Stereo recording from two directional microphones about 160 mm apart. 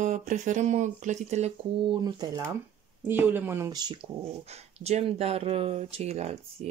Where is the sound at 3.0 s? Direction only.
10° right (ahead or behind).